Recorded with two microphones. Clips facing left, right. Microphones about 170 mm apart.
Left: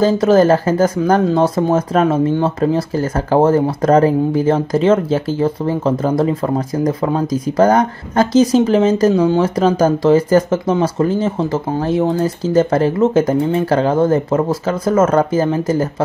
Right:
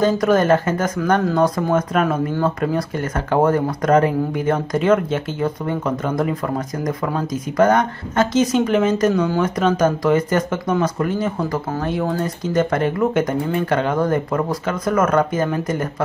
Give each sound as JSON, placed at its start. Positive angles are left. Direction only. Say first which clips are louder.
{"t": 0.0, "sound": "speech", "louder": "left 5 dB", "side_deg": 30}